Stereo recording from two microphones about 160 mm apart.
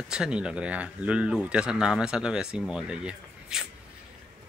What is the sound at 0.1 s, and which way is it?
Speech, 5° right (ahead or behind).